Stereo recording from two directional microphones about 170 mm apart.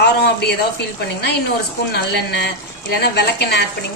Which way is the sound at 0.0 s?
75° left (ahead or behind).